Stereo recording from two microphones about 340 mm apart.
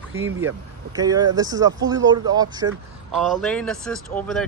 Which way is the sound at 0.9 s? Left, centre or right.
Centre.